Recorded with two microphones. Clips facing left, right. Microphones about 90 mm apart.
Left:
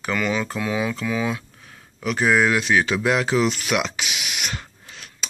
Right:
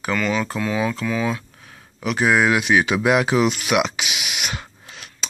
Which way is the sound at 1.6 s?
5° right (ahead or behind).